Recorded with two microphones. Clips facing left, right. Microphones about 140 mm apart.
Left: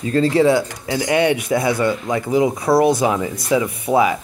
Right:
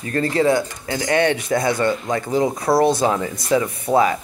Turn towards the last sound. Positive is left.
turn(degrees=10)  # may be behind; listen again after turning